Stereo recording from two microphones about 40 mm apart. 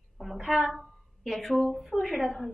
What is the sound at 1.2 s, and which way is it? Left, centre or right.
A woman's voice, centre.